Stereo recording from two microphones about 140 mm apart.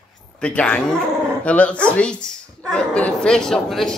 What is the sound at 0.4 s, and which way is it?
A woman's voice, 10° left (ahead or behind).